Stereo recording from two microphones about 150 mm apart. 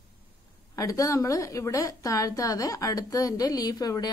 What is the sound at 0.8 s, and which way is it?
A woman's voice, 20° left (ahead or behind).